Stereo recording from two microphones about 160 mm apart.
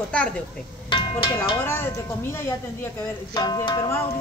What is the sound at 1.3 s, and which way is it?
Speech, 15° left (ahead or behind).